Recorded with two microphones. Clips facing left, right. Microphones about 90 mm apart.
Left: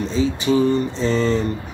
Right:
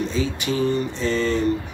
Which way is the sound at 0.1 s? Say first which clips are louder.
Left 6 dB; 30° left (ahead or behind).